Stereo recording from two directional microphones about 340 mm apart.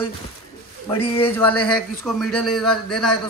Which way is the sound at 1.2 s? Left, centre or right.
Centre.